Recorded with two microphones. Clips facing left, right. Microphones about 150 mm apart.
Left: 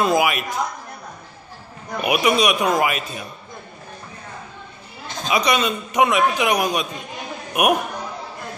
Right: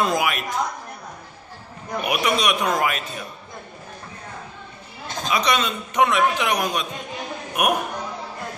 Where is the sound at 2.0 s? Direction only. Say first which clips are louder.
Left 4 dB; 5° left (ahead or behind).